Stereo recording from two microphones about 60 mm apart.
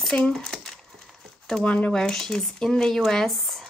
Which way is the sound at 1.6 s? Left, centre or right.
Centre.